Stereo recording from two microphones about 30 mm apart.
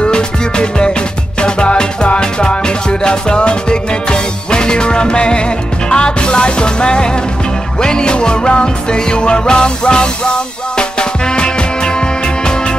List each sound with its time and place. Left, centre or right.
0.0 s music: left